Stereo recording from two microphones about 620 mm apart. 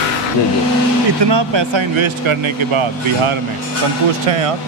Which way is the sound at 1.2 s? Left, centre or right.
Right.